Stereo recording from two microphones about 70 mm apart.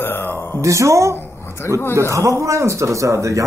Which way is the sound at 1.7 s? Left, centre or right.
Left.